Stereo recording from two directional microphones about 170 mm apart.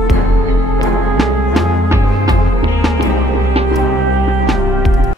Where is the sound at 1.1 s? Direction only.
Centre (ahead or behind).